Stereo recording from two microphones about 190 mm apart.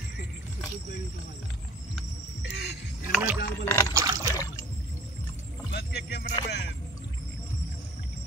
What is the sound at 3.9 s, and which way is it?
Trickle, 15° right (ahead or behind).